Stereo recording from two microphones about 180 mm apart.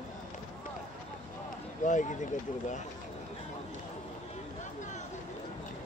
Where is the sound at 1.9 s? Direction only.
45° left (ahead or behind).